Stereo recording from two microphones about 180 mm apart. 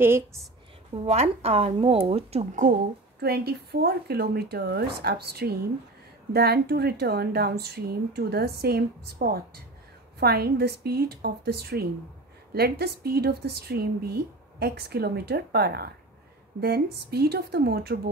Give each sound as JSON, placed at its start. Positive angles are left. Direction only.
{"t": 0.0, "sound": "a woman's voice", "side_deg": -15}
{"t": 1.0, "sound": "speech", "side_deg": -35}
{"t": 3.2, "sound": "a woman's voice", "side_deg": -60}